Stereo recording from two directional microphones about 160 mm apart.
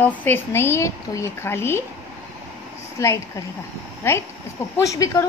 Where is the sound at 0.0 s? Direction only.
10° left (ahead or behind).